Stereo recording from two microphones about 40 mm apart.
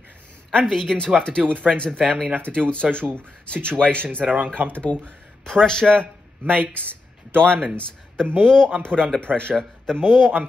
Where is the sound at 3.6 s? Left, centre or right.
Right.